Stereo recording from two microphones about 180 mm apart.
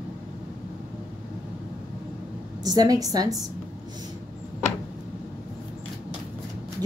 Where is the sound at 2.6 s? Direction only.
20° right (ahead or behind).